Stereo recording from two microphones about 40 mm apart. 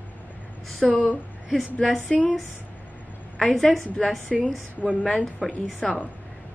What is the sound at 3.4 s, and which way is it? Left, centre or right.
A woman's voice, centre.